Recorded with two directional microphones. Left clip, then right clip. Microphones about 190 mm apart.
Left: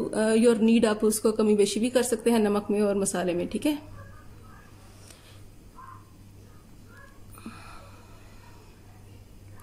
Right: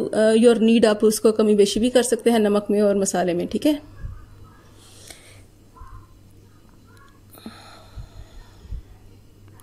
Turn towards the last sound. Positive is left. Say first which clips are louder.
# right 3 dB
turn(degrees=-25)  # may be behind; listen again after turning